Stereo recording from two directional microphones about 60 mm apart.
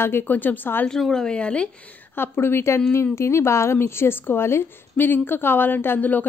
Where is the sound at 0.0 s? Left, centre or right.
Left.